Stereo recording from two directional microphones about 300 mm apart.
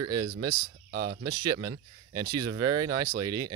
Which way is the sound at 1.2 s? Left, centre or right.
Centre.